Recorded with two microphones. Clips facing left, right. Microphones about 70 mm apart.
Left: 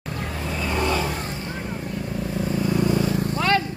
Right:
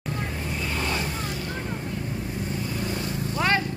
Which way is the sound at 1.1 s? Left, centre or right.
Left.